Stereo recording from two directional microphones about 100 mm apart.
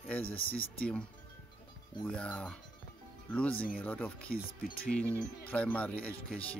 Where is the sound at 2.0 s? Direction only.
10° left (ahead or behind).